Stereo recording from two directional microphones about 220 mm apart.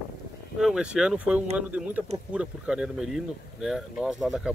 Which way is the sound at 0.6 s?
5° right (ahead or behind).